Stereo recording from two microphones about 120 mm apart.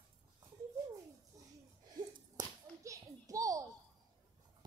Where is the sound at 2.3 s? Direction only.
30° right (ahead or behind).